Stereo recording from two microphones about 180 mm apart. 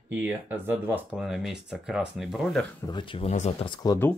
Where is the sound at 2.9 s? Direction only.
30° left (ahead or behind).